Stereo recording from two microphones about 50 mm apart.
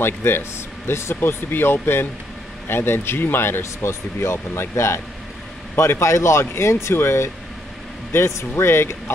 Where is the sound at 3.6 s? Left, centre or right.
Left.